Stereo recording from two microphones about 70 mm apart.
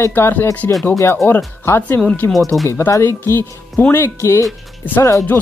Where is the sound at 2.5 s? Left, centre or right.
Centre.